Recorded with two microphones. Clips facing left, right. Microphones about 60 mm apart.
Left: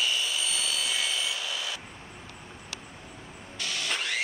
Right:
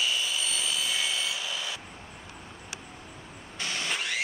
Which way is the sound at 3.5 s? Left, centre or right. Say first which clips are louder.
Right 1 dB; right.